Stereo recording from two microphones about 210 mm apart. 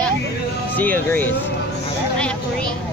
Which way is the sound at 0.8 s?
10° left (ahead or behind).